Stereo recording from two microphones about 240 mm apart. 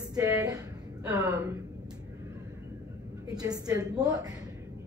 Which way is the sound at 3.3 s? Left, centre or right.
Centre.